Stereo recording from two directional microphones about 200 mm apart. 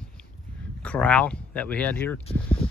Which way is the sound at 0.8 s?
5° left (ahead or behind).